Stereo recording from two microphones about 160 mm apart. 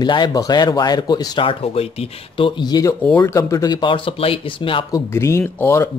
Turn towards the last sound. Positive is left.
turn(degrees=15)  # may be behind; listen again after turning